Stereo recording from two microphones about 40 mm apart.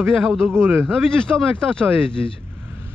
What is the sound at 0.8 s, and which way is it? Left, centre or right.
Speech, centre.